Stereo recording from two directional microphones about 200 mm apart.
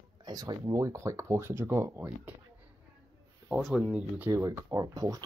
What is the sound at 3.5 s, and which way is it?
Speech, centre (ahead or behind).